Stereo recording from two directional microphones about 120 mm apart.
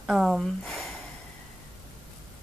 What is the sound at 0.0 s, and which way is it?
Speech, 5° right (ahead or behind).